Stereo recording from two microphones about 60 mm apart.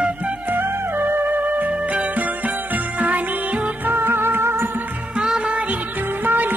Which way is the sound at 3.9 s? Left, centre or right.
Right.